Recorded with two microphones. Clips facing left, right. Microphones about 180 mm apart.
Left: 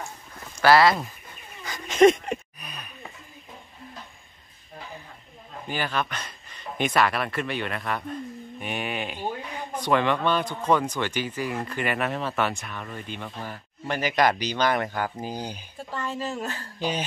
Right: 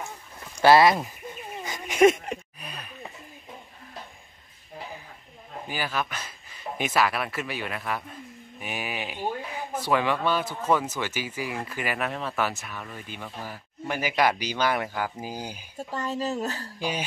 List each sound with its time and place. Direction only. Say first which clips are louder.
0.6 s speech: right 1 dB; 20° right (ahead or behind)
1.6 s dog: left 1 dB; 20° right (ahead or behind)
5.7 s speech: left 2 dB; 5° right (ahead or behind)
15.9 s speech: right 2 dB; 40° right (ahead or behind)